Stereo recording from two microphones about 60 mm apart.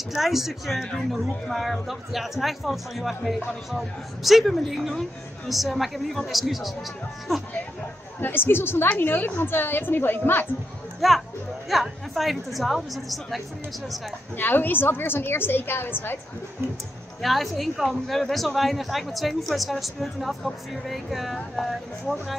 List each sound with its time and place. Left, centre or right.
0.1 s a woman's voice: centre
8.2 s a woman's voice: left
11.0 s a woman's voice: centre
14.3 s a woman's voice: left
17.2 s a woman's voice: centre